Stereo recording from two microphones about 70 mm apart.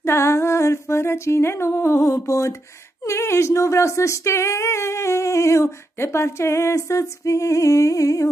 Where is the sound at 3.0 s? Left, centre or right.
Left.